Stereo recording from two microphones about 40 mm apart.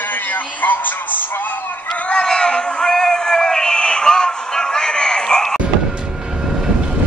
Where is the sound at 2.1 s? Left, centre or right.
Centre.